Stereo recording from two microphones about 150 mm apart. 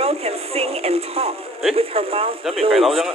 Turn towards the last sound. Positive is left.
turn(degrees=0)  # may be behind; listen again after turning